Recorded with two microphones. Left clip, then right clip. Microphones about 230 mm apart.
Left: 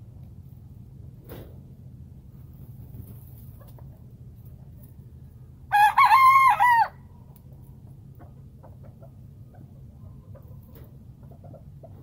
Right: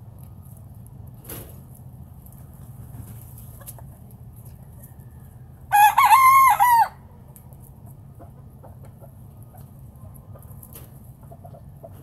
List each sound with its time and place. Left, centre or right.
5.7 s chicken: left